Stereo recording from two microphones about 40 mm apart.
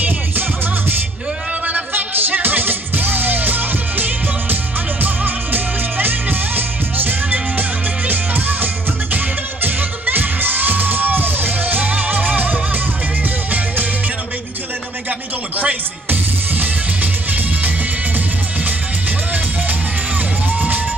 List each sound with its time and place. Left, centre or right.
0.0 s music: right
15.0 s a sound: right
16.1 s music: right
20.5 s music: right